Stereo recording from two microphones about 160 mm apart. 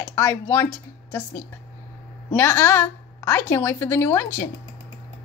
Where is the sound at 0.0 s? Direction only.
15° left (ahead or behind).